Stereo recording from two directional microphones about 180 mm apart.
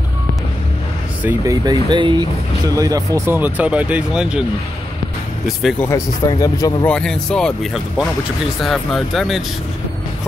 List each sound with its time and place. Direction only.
1.2 s speech: 20° right (ahead or behind)
5.8 s speech: 15° left (ahead or behind)
6.9 s speech: 5° left (ahead or behind)